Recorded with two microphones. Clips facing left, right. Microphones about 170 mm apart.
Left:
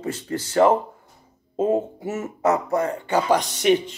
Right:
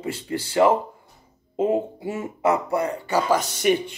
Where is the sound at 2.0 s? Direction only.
30° right (ahead or behind).